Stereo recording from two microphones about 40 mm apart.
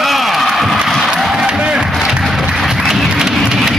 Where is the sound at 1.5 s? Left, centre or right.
Right.